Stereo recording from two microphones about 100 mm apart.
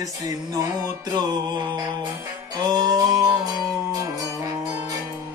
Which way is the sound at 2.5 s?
45° right (ahead or behind).